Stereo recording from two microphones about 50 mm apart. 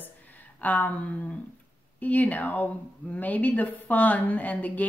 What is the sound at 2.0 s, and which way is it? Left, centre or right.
A woman's voice, left.